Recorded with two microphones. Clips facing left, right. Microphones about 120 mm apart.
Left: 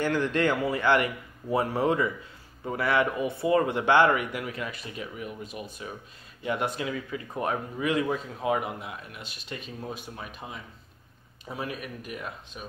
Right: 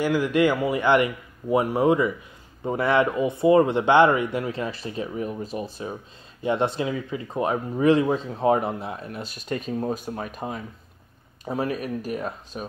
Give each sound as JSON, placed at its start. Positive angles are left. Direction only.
{"t": 0.0, "sound": "a man's voice", "side_deg": -10}